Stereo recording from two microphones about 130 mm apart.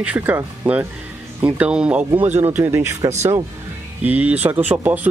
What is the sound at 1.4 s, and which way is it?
Speech, 10° right (ahead or behind).